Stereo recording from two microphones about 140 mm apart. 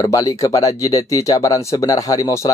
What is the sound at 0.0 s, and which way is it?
Speech, 25° left (ahead or behind).